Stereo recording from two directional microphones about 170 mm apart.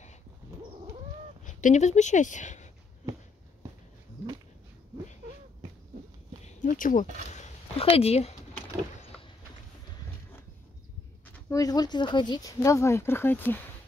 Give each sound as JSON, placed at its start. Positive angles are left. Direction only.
{"t": 1.4, "sound": "speech", "side_deg": 45}
{"t": 6.4, "sound": "speech", "side_deg": 50}
{"t": 11.2, "sound": "speech", "side_deg": 15}